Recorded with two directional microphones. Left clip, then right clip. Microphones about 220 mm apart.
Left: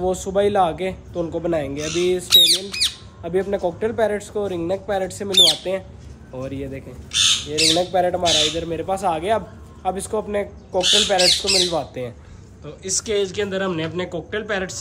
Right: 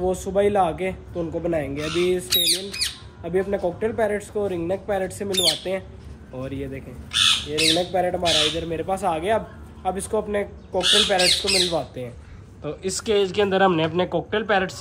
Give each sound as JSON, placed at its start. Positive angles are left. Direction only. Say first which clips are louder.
{"t": 0.0, "sound": "a man's voice", "louder": "left 2 dB", "side_deg": 5}
{"t": 2.3, "sound": "a man's voice", "louder": "left 8 dB", "side_deg": 15}
{"t": 3.3, "sound": "a man's voice", "louder": "left 2 dB", "side_deg": 5}
{"t": 7.1, "sound": "speech", "louder": "left 1 dB", "side_deg": -25}
{"t": 7.7, "sound": "a man's voice", "louder": "left 3 dB", "side_deg": 5}
{"t": 12.6, "sound": "speech", "louder": "even", "side_deg": -5}